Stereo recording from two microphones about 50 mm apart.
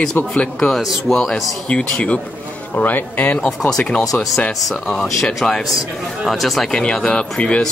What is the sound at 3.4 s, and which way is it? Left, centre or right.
Speech, centre.